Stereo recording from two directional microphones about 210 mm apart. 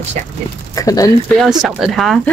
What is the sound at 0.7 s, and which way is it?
Speech, 15° left (ahead or behind).